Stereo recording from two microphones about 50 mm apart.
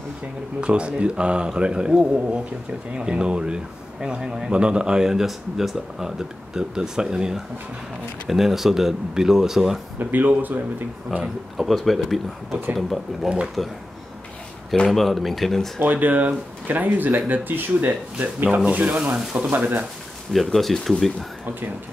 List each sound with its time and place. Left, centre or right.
0.6 s a man's voice: right
9.9 s speech: right
11.1 s speech: centre
14.9 s speech: centre
15.8 s speech: right
19.1 s speech: centre
19.5 s speech: right
20.5 s speech: centre